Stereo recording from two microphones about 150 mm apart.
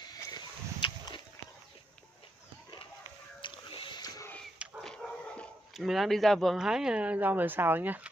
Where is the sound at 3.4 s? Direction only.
35° left (ahead or behind).